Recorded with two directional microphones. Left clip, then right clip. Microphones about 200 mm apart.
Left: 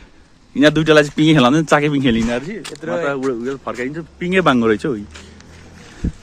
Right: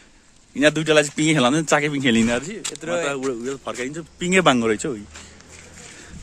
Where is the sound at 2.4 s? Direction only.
10° right (ahead or behind).